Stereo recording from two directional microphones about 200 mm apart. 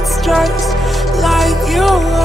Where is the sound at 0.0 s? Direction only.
Centre (ahead or behind).